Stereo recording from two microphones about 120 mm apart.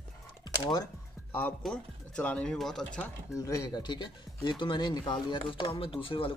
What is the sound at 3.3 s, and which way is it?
Speech, 25° left (ahead or behind).